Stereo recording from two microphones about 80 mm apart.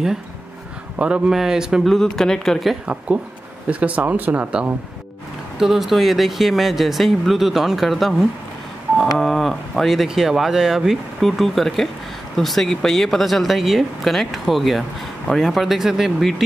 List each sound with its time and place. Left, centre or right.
0.9 s speech: centre
2.0 s speech: centre
3.8 s speech: centre
5.6 s speech: centre